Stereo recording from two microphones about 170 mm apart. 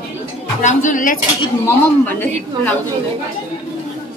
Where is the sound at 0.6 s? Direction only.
45° left (ahead or behind).